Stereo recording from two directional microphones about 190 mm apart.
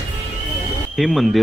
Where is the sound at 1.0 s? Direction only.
Centre (ahead or behind).